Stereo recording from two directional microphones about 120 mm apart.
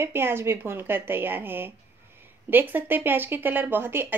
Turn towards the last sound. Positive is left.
turn(degrees=-20)  # may be behind; listen again after turning